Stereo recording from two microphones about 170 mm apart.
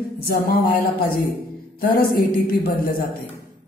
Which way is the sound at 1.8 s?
60° left (ahead or behind).